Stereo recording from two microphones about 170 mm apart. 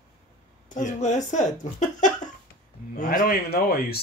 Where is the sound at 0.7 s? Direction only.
45° left (ahead or behind).